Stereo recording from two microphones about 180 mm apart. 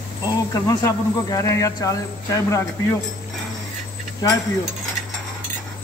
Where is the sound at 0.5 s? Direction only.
20° left (ahead or behind).